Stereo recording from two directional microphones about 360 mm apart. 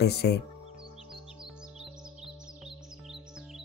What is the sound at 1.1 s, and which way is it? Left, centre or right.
Music, centre.